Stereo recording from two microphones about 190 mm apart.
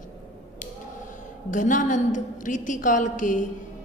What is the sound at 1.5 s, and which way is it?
A woman's voice, 40° left (ahead or behind).